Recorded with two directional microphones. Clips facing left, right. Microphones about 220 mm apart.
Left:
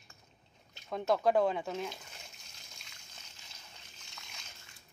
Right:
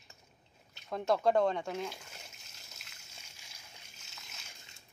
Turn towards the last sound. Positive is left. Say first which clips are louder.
# left 1 dB
turn(degrees=-5)  # may be behind; listen again after turning